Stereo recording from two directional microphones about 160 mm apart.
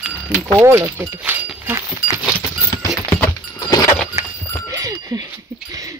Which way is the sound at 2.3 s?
15° left (ahead or behind).